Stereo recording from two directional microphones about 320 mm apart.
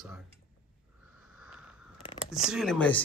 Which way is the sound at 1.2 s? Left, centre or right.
Centre.